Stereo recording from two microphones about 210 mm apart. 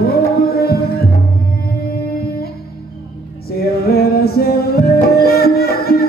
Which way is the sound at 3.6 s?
45° left (ahead or behind).